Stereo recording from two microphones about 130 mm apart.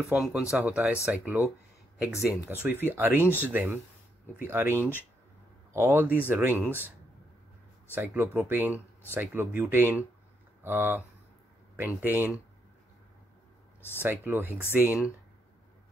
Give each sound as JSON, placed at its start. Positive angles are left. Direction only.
{"t": 0.1, "sound": "speech", "side_deg": -10}
{"t": 7.9, "sound": "speech", "side_deg": -15}
{"t": 14.0, "sound": "speech", "side_deg": -15}